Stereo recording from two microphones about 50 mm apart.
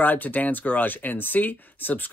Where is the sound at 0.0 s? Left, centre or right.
Left.